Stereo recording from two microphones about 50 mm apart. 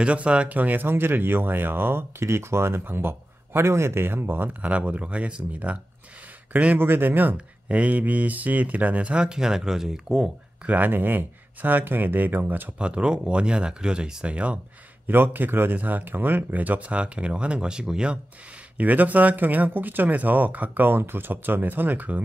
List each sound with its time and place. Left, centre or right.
0.0 s speech: right
0.6 s speech: right
0.8 s speech: right
2.8 s speech: right
4.6 s speech: right
6.8 s speech: right
7.3 s speech: right; by 10.3 s centre
10.6 s speech: right
12.7 s speech: right
15.0 s speech: right; by 18.2 s centre
18.8 s speech: right